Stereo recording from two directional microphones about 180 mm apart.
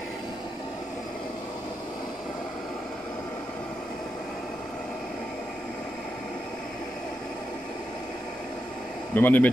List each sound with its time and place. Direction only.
9.1 s speech: 10° left (ahead or behind)